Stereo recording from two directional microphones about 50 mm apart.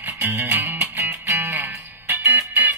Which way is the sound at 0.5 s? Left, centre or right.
Right.